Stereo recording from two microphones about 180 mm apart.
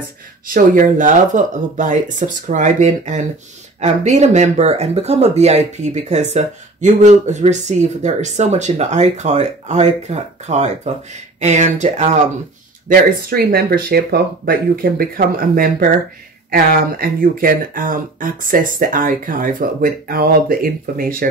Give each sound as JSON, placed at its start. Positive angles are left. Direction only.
{"t": 0.5, "sound": "speech", "side_deg": -45}
{"t": 12.8, "sound": "speech", "side_deg": -50}